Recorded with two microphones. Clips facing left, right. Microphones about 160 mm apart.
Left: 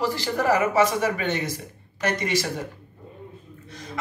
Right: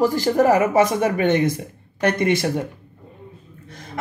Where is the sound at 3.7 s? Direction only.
55° right (ahead or behind).